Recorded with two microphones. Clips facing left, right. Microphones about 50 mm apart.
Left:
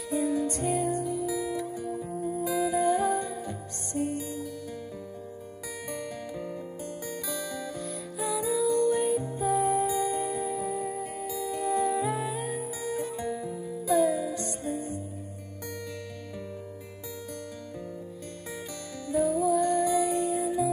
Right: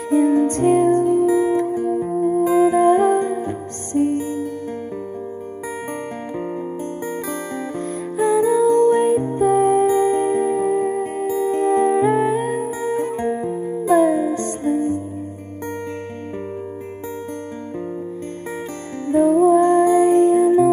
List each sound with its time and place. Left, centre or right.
0.1 s music: right
7.2 s music: right
19.0 s music: right